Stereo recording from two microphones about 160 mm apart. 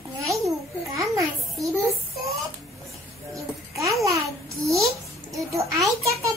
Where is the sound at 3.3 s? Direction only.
20° right (ahead or behind).